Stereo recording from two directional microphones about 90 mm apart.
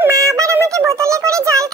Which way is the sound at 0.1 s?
40° right (ahead or behind).